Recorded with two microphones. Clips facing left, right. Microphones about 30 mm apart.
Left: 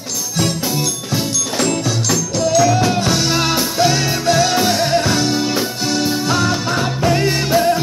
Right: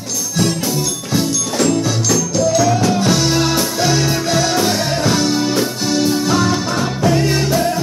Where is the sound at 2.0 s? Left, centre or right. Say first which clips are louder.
Right 1 dB; centre.